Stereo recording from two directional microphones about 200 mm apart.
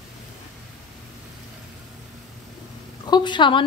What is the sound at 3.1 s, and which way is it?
Speech, 20° left (ahead or behind).